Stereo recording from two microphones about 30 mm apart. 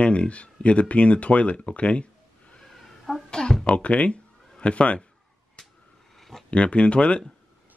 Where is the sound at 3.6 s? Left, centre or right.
Left.